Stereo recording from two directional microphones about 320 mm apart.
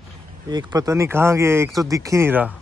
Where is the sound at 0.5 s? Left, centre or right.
Centre.